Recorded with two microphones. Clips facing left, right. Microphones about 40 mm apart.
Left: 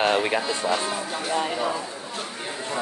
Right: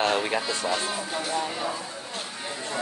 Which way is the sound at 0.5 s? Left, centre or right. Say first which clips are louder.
Left 3 dB; centre.